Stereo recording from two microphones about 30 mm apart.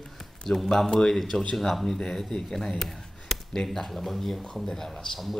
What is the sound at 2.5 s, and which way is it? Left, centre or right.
Speech, centre.